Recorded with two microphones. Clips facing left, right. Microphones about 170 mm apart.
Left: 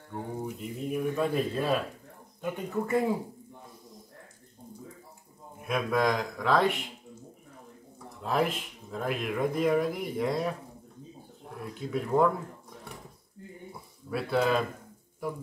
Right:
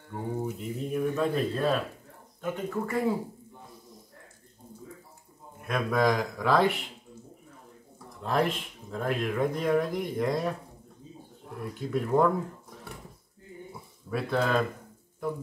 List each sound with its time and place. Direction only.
0.1 s speech: centre (ahead or behind)
1.1 s speech: 10° left (ahead or behind)
5.7 s speech: centre (ahead or behind)
8.2 s speech: 5° left (ahead or behind)
11.9 s speech: centre (ahead or behind)
14.1 s speech: 5° left (ahead or behind)